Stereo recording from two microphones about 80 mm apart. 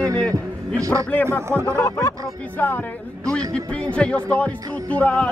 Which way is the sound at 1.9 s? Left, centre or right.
Left.